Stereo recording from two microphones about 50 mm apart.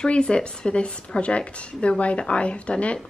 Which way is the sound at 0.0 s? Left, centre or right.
Centre.